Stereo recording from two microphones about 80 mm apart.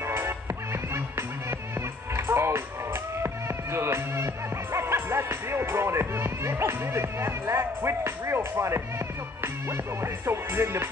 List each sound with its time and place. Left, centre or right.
0.0 s music: right
4.7 s speech: right
10.2 s music: right